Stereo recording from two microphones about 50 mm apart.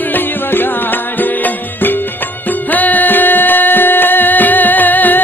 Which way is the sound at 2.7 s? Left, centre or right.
Left.